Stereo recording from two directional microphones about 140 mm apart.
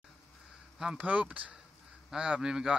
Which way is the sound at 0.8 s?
5° right (ahead or behind).